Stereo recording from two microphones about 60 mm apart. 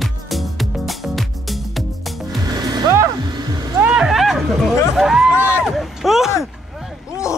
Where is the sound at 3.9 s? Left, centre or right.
Centre.